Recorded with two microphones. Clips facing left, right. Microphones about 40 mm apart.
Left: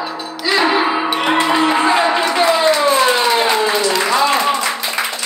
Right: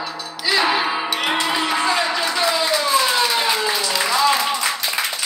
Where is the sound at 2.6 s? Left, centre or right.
Centre.